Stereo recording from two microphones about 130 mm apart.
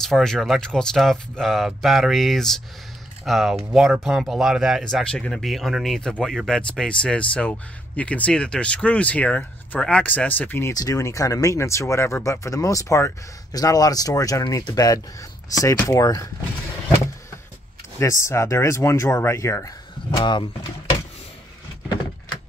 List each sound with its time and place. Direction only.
0.0 s speech: 5° left (ahead or behind)
10.7 s speech: 25° left (ahead or behind)
17.9 s speech: 20° left (ahead or behind)
20.2 s speech: 35° left (ahead or behind)